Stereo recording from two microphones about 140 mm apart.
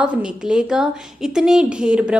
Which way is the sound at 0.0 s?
5° right (ahead or behind).